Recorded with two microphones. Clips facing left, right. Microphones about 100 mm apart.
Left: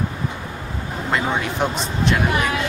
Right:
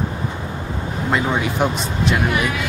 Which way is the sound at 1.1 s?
Centre (ahead or behind).